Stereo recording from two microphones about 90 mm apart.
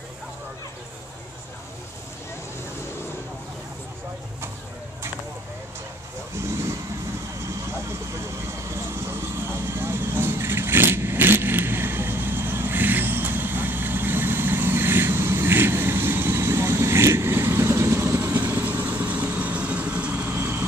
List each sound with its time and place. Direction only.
6.4 s vehicle: 30° right (ahead or behind)
8.6 s vehicle: 30° right (ahead or behind)